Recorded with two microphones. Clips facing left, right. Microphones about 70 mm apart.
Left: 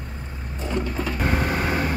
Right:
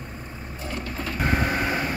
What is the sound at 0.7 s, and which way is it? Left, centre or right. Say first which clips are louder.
Sewing machine: left 6 dB; centre.